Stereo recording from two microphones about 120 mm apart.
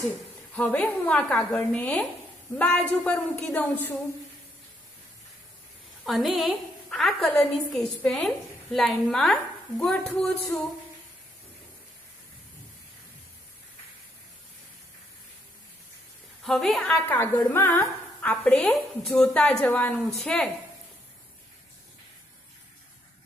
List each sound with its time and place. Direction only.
0.6 s a woman's voice: 15° left (ahead or behind)
6.0 s a woman's voice: centre (ahead or behind)
16.4 s a woman's voice: centre (ahead or behind)
17.5 s a sound: 20° left (ahead or behind)
18.3 s a woman's voice: 10° left (ahead or behind)